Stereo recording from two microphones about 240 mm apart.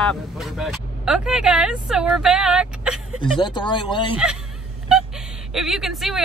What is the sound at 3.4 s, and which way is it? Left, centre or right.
Speech, centre.